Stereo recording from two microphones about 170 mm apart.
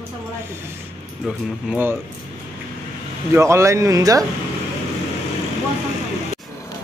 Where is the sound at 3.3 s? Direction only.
15° right (ahead or behind).